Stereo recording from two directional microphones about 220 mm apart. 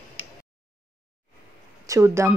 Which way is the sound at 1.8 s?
15° right (ahead or behind).